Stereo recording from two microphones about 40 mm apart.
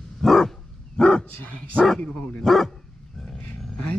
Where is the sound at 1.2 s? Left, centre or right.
Left.